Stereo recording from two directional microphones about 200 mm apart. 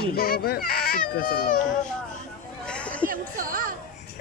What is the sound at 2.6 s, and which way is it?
Chatter, 5° left (ahead or behind).